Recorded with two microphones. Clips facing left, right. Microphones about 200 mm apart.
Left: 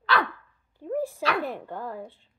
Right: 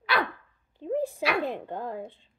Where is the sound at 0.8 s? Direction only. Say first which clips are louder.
Even; 20° right (ahead or behind).